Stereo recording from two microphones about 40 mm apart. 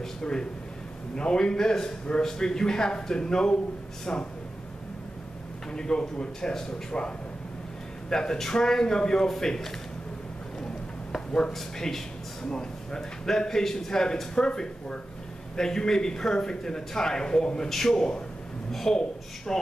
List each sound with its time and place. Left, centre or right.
0.2 s a man's voice: left
5.7 s a man's voice: centre
8.1 s a man's voice: centre
10.6 s a sound: centre
11.5 s a man's voice: centre
12.4 s a man's voice: centre